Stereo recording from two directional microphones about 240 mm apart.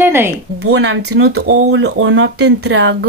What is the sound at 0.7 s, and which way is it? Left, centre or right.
Speech, right.